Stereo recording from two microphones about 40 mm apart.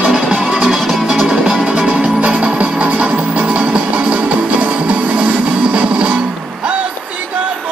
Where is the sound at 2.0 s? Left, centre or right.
Right.